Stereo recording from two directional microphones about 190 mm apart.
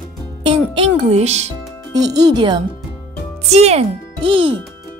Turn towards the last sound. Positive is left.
turn(degrees=-30)  # may be behind; listen again after turning